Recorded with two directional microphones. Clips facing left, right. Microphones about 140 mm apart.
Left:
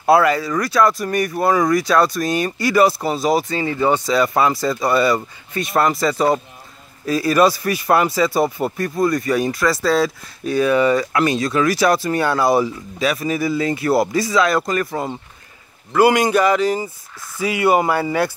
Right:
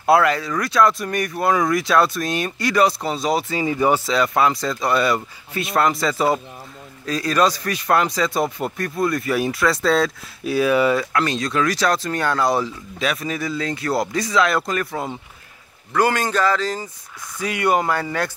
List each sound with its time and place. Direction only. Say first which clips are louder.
0.0 s a man's voice: left 2 dB; centre (ahead or behind)
3.5 s speech: left 1 dB; 10° right (ahead or behind)
4.0 s a man's voice: left 2 dB; centre (ahead or behind)
15.9 s a man's voice: left 5 dB; 10° left (ahead or behind)